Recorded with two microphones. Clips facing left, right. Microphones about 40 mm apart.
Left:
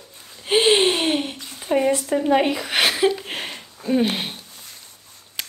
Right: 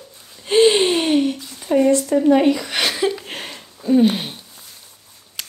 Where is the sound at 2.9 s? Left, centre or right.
Centre.